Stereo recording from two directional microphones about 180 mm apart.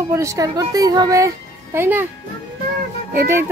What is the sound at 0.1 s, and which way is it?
A child's voice, 15° right (ahead or behind).